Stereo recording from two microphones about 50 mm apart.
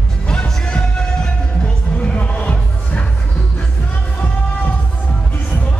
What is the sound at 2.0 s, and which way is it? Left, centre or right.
Music, left.